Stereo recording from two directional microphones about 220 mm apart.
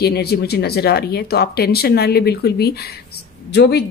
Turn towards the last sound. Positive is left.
turn(degrees=50)  # may be behind; listen again after turning